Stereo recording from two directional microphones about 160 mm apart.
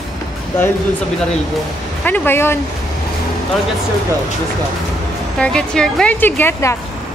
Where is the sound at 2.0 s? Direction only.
10° left (ahead or behind).